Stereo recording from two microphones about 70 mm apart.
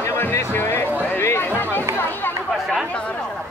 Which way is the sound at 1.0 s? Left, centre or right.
Left.